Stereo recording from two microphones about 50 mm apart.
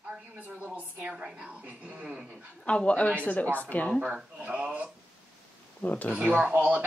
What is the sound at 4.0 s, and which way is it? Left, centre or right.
Speech, centre.